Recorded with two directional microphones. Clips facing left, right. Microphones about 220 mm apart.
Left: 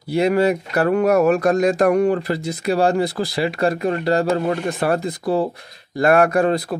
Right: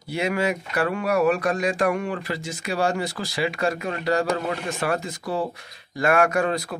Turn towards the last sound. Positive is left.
turn(degrees=35)  # may be behind; listen again after turning